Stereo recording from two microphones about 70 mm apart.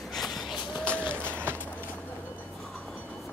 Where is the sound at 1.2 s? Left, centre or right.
Right.